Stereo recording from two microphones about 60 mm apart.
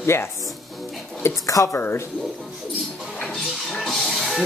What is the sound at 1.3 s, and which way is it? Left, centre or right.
Speech, left.